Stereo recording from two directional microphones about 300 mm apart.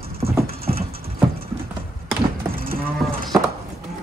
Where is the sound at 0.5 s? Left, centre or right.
Right.